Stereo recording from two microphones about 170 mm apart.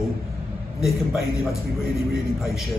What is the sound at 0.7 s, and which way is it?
Speech, centre (ahead or behind).